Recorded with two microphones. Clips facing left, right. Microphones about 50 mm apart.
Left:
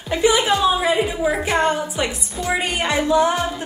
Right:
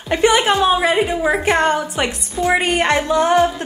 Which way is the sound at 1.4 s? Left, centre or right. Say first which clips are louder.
Right 3 dB; right.